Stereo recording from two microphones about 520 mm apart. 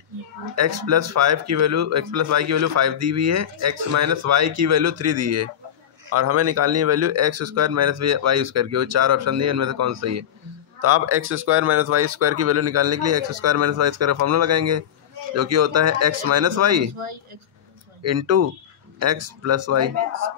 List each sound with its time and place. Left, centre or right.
0.6 s speech: right
18.0 s speech: right